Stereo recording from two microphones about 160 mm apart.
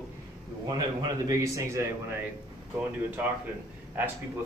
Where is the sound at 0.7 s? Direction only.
20° right (ahead or behind).